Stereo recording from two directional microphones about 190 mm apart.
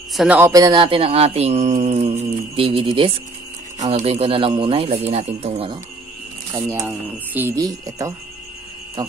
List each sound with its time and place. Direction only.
0.1 s speech: centre (ahead or behind)
0.4 s a man's voice: 20° right (ahead or behind)
6.5 s speech: 15° right (ahead or behind)